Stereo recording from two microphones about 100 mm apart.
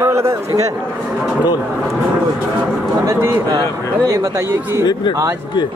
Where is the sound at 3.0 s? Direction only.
25° right (ahead or behind).